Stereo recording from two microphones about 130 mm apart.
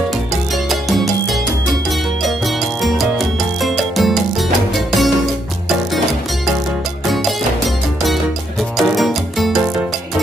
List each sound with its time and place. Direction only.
0.7 s music: centre (ahead or behind)
7.1 s music: centre (ahead or behind)
8.7 s music: centre (ahead or behind)